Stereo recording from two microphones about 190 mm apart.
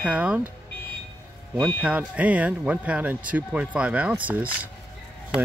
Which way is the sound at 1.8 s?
5° right (ahead or behind).